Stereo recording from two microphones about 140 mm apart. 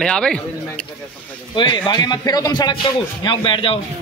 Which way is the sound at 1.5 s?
35° left (ahead or behind).